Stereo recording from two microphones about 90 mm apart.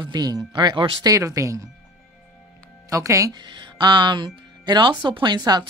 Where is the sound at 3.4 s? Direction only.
60° right (ahead or behind).